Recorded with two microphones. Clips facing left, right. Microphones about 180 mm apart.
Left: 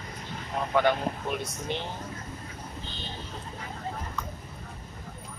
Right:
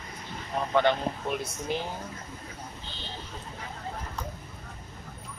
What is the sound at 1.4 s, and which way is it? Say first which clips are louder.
Speech: right 1 dB; 5° right (ahead or behind).